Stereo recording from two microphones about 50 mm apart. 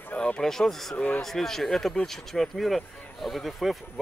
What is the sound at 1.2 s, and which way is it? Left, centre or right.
Speech, centre.